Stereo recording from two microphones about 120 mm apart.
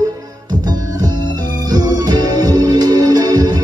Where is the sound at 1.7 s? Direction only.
35° right (ahead or behind).